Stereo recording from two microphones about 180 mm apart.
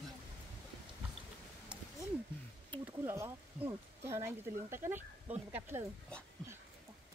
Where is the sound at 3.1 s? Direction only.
15° right (ahead or behind).